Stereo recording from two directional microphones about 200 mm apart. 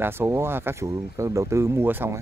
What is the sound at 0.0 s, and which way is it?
Speech, 15° right (ahead or behind).